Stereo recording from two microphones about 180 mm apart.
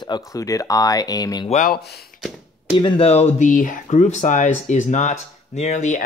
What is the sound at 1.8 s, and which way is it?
Speech, 60° left (ahead or behind).